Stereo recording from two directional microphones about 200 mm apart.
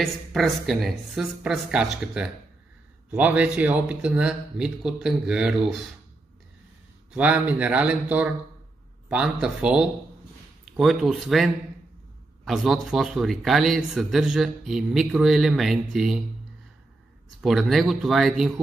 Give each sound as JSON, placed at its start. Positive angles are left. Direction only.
{"t": 0.0, "sound": "speech", "side_deg": 0}
{"t": 7.1, "sound": "a man's voice", "side_deg": -5}
{"t": 17.4, "sound": "speech", "side_deg": 0}